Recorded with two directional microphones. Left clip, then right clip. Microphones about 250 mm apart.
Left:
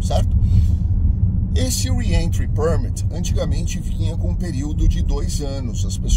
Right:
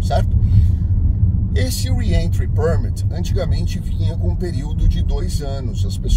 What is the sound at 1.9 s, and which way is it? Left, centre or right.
Speech, centre.